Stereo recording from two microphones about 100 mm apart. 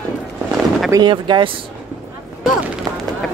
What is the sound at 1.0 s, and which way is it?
Speech, 50° right (ahead or behind).